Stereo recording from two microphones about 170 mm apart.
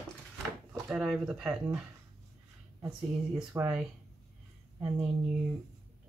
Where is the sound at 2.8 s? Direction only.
20° right (ahead or behind).